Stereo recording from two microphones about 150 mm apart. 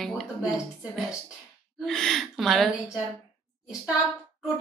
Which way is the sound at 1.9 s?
5° left (ahead or behind).